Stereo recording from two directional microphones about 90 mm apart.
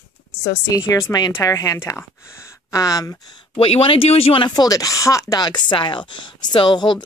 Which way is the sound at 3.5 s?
90° left.